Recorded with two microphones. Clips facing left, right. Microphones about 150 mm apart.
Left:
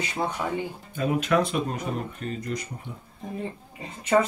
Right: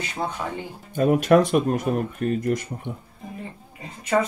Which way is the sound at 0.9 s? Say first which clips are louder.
Right 7 dB; 50° right (ahead or behind).